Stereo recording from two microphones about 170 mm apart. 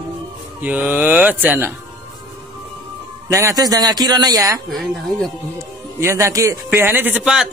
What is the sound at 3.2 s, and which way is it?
A man's voice, 20° right (ahead or behind).